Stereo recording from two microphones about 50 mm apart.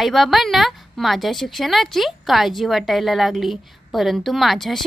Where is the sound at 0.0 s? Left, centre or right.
Centre.